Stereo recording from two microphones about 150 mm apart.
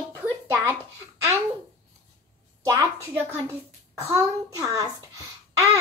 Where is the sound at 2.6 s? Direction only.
15° right (ahead or behind).